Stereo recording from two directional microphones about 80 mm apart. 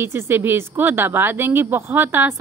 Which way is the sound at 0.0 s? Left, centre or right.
Right.